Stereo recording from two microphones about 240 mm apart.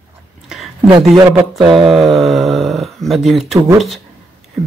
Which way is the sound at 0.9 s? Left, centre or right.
Right.